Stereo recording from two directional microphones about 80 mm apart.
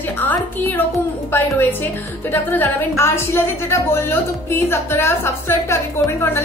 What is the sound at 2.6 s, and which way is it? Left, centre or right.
A woman's voice, left.